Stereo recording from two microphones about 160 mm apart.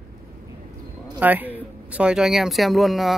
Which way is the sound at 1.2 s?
10° right (ahead or behind).